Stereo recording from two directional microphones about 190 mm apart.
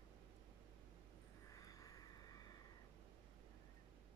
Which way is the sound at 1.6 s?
20° left (ahead or behind).